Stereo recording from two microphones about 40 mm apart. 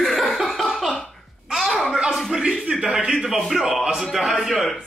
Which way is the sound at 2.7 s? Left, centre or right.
Right.